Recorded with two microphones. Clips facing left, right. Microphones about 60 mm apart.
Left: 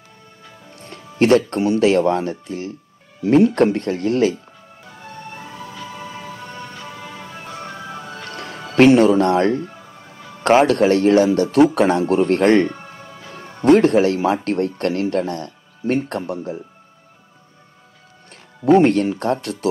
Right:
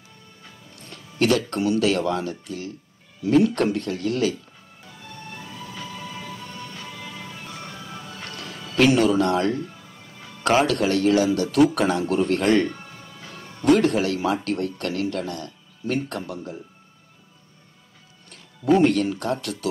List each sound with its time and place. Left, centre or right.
0.7 s a man's voice: left
4.8 s music: left
10.4 s a man's voice: left
18.3 s speech: left